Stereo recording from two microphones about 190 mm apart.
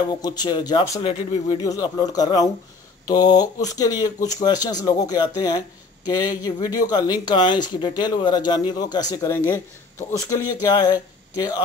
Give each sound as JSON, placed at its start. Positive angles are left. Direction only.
{"t": 0.2, "sound": "speech", "side_deg": 20}
{"t": 0.9, "sound": "speech", "side_deg": 35}
{"t": 1.5, "sound": "speech", "side_deg": 20}